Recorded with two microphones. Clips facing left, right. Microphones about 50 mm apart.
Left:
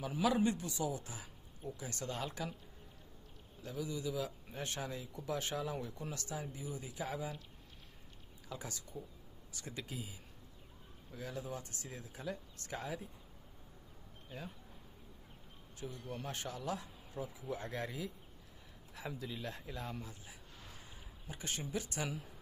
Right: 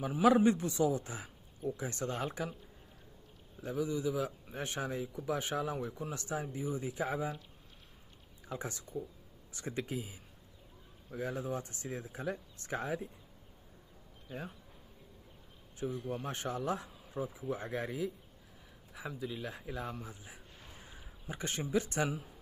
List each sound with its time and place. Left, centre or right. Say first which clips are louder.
0.2 s speech: right 7 dB; right
3.6 s speech: right 6 dB; right
6.1 s speech: right 6 dB; right
8.5 s speech: right 5 dB; right
11.1 s speech: right 6 dB; right
15.8 s speech: right 7 dB; right
20.1 s a sound: right 3 dB; right
21.7 s speech: right 9 dB; right